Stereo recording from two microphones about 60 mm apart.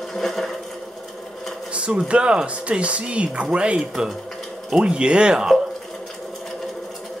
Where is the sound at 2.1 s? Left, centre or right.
Centre.